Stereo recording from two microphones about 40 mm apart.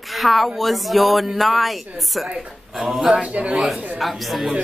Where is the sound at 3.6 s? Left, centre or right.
Centre.